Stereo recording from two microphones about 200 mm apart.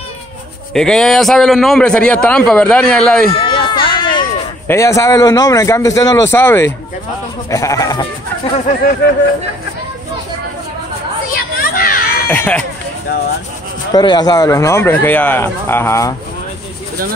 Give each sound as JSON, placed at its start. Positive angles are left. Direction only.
{"t": 0.7, "sound": "a man's voice", "side_deg": 5}
{"t": 3.3, "sound": "a sound", "side_deg": 25}
{"t": 4.6, "sound": "speech", "side_deg": 15}
{"t": 11.3, "sound": "children playing", "side_deg": 45}
{"t": 12.3, "sound": "speech", "side_deg": 5}
{"t": 13.9, "sound": "speech", "side_deg": 20}